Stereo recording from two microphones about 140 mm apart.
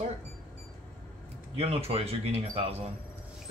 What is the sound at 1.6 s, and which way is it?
Speech, 45° right (ahead or behind).